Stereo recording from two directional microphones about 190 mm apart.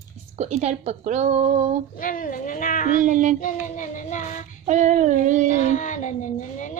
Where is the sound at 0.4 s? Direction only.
35° right (ahead or behind).